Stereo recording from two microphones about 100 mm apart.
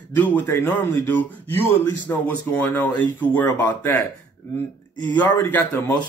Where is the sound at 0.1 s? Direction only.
15° left (ahead or behind).